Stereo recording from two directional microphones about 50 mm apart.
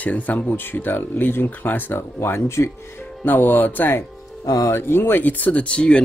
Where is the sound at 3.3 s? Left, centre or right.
Left.